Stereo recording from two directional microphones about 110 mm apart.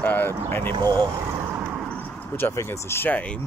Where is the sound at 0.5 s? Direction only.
20° left (ahead or behind).